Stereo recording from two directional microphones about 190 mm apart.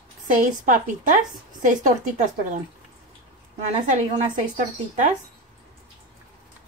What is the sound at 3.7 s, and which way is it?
Speech, 40° right (ahead or behind).